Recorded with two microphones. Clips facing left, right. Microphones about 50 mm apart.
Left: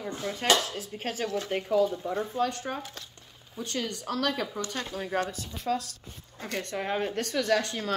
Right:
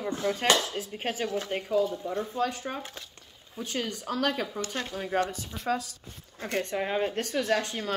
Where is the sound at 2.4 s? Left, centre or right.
Centre.